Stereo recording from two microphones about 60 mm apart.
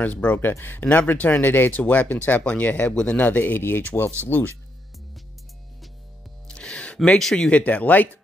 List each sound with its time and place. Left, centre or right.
0.0 s speech: left
6.4 s music: centre
7.2 s speech: centre; by 8.1 s left